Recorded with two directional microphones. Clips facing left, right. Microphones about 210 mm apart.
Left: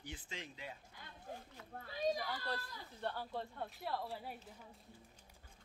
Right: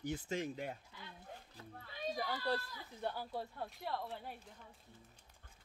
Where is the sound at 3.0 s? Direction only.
10° right (ahead or behind); by 4.5 s 5° left (ahead or behind).